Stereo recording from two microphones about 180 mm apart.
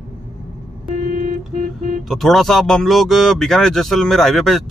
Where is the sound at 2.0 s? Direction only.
Centre (ahead or behind).